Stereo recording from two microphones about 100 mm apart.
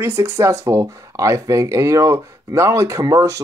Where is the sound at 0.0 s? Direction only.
25° right (ahead or behind).